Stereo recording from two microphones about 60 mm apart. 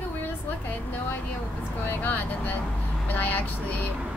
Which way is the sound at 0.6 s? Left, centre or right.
Left.